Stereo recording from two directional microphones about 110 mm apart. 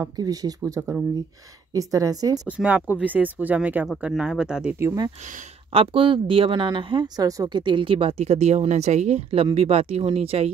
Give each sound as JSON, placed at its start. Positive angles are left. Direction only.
{"t": 0.0, "sound": "a woman's voice", "side_deg": -35}
{"t": 2.4, "sound": "speech", "side_deg": -10}
{"t": 4.7, "sound": "speech", "side_deg": -25}
{"t": 5.7, "sound": "speech", "side_deg": -55}
{"t": 7.2, "sound": "a woman's voice", "side_deg": -35}
{"t": 7.5, "sound": "speech", "side_deg": -45}